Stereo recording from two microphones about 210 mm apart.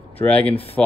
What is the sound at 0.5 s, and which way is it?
Speech, 30° left (ahead or behind).